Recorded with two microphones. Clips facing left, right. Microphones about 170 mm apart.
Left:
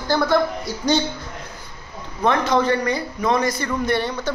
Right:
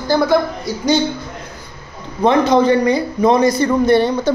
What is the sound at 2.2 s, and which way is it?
A man's voice, 20° right (ahead or behind).